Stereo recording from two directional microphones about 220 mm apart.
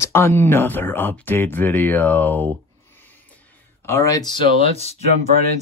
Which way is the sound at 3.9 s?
15° left (ahead or behind).